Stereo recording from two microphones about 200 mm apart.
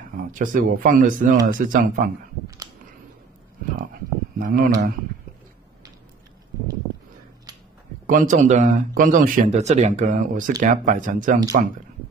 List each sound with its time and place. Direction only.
0.2 s speech: 40° right (ahead or behind)
2.4 s a sound: 15° right (ahead or behind)
4.4 s speech: 45° right (ahead or behind)
8.1 s speech: 40° right (ahead or behind)